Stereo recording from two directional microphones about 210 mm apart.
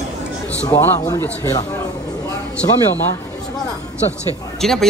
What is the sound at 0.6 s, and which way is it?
A man's voice, 15° left (ahead or behind).